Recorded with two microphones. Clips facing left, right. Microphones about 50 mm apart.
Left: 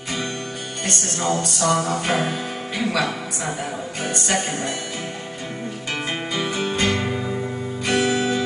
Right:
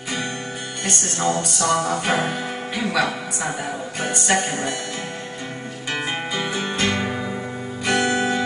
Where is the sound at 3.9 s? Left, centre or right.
Centre.